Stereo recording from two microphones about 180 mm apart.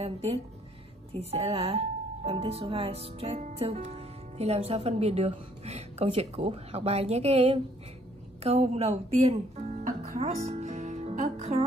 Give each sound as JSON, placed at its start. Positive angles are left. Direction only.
{"t": 0.0, "sound": "speech", "side_deg": -35}